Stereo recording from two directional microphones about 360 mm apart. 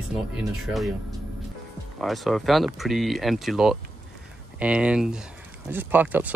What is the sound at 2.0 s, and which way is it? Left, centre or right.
Speech, centre.